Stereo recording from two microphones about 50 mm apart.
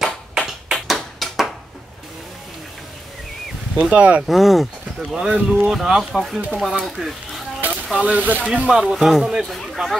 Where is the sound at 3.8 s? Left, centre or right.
Right.